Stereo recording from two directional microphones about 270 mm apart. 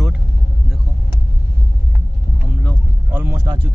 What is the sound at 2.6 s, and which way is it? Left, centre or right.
Vehicle, centre.